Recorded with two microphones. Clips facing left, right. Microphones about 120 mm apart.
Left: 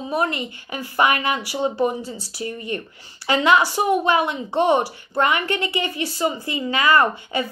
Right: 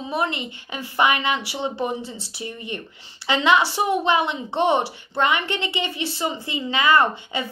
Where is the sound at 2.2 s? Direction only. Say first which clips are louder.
Left 4 dB; 20° right (ahead or behind).